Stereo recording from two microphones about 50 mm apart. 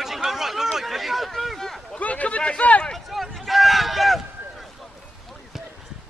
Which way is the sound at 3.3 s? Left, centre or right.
Centre.